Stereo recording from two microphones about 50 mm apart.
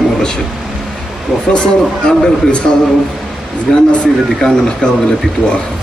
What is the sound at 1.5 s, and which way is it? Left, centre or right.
A man's voice, centre.